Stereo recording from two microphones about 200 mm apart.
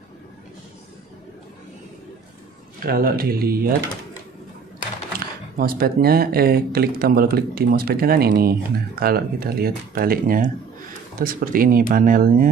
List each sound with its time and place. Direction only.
2.8 s speech: 45° right (ahead or behind)
5.6 s speech: 50° right (ahead or behind)